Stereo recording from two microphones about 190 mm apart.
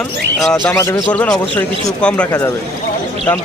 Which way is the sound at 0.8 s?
15° left (ahead or behind).